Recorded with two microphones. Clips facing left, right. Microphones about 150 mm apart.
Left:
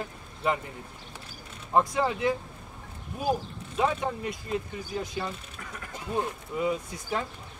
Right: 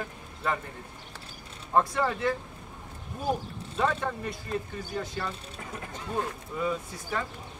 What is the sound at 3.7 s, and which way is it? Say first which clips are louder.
Speech: left 1 dB; 15° left (ahead or behind).